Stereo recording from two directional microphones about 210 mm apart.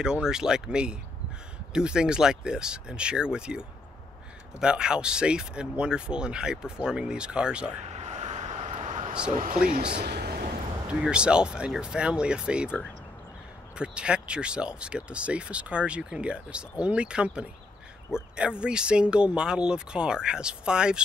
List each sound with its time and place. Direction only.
0.0 s speech: 5° right (ahead or behind)
7.9 s vehicle: 35° right (ahead or behind)
9.7 s speech: 45° right (ahead or behind)
10.0 s a sound: 50° right (ahead or behind)
10.9 s speech: 5° right (ahead or behind)
13.7 s speech: 5° right (ahead or behind)